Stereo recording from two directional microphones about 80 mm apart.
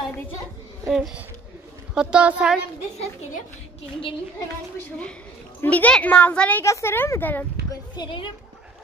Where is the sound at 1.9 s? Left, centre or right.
Centre.